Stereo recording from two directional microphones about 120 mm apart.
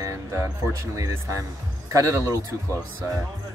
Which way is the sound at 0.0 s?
25° right (ahead or behind).